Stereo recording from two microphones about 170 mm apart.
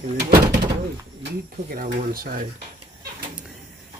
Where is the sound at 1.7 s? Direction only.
60° right (ahead or behind).